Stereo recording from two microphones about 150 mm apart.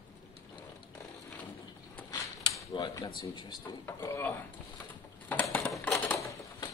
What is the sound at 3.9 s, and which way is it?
Speech, 15° left (ahead or behind).